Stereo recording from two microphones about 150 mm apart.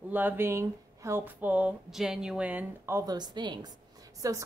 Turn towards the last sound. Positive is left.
turn(degrees=-20)  # may be behind; listen again after turning